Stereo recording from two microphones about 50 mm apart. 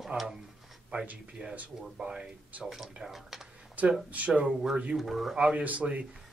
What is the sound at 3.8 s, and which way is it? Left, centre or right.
Speech, right.